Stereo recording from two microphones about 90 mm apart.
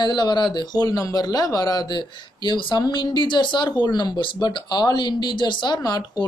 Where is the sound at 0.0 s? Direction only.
55° left (ahead or behind).